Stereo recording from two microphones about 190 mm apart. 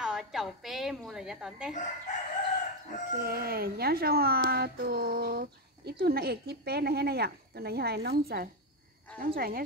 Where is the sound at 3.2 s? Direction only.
55° right (ahead or behind).